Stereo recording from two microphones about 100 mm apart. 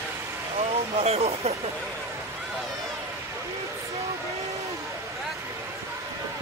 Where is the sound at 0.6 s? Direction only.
90° right.